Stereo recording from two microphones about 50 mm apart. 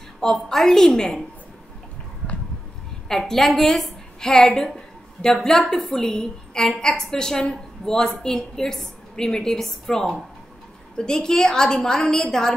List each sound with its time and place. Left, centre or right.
0.2 s a woman's voice: centre
3.1 s a woman's voice: centre